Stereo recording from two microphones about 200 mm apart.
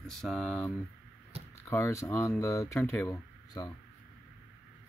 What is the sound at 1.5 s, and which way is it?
Speech, 15° left (ahead or behind).